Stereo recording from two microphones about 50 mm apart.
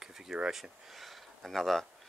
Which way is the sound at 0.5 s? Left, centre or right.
Centre.